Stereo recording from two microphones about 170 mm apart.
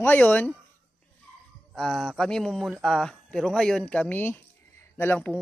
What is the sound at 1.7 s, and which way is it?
A man's voice, centre (ahead or behind).